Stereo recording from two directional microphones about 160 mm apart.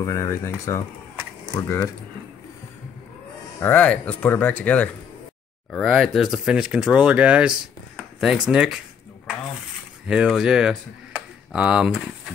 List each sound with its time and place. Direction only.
0.0 s speech: 20° left (ahead or behind)
3.5 s speech: 10° left (ahead or behind)
10.0 s speech: 5° right (ahead or behind)